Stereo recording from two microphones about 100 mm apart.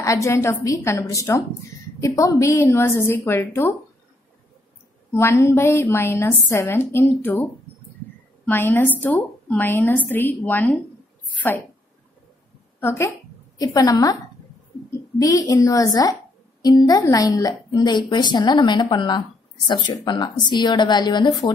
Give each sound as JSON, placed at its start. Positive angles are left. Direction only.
{"t": 0.0, "sound": "a woman's voice", "side_deg": 30}
{"t": 5.1, "sound": "a woman's voice", "side_deg": 25}
{"t": 8.5, "sound": "a woman's voice", "side_deg": 20}
{"t": 12.8, "sound": "a woman's voice", "side_deg": 25}
{"t": 13.6, "sound": "a woman's voice", "side_deg": 35}